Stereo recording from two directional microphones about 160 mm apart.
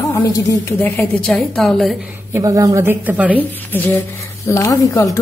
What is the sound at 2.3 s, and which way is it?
Speech, 20° right (ahead or behind).